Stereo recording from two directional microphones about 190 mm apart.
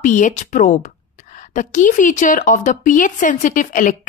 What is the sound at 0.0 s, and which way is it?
A woman's voice, 40° left (ahead or behind).